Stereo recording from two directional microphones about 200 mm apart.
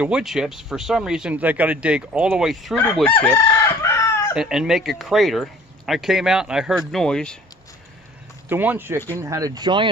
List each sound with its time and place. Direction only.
0.0 s speech: 5° right (ahead or behind)
2.8 s chicken: 10° left (ahead or behind)
4.4 s speech: 5° right (ahead or behind)
8.5 s speech: 10° right (ahead or behind)